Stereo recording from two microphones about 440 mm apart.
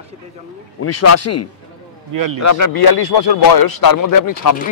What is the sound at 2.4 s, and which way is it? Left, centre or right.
A man's voice, left.